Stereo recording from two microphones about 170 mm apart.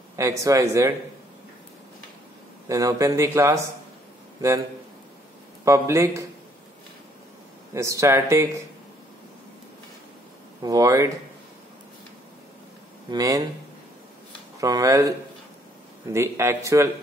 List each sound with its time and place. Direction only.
0.1 s speech: 20° right (ahead or behind)
2.7 s speech: 20° right (ahead or behind)
5.7 s speech: 15° right (ahead or behind)
7.7 s speech: 20° right (ahead or behind)
10.6 s speech: 20° right (ahead or behind)
13.1 s speech: 20° right (ahead or behind)
14.6 s speech: 20° right (ahead or behind)